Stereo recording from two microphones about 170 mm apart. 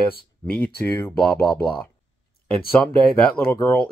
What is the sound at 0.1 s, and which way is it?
Speech, 60° left (ahead or behind).